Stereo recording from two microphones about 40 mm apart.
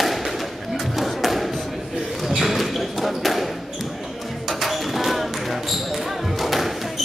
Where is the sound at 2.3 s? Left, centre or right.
Centre.